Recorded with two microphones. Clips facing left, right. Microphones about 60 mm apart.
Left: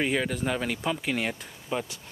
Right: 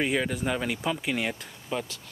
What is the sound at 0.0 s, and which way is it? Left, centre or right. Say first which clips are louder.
Speech: even; centre.